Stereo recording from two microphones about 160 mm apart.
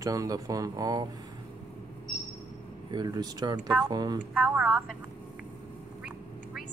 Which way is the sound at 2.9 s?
25° right (ahead or behind).